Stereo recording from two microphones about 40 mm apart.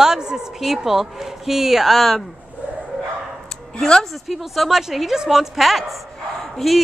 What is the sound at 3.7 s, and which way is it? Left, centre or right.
Speech, centre.